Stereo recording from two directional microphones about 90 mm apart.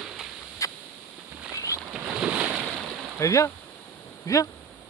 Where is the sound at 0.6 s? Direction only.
35° left (ahead or behind).